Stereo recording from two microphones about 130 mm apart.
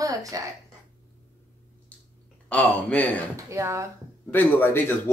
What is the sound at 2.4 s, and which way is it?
Speech, 10° left (ahead or behind).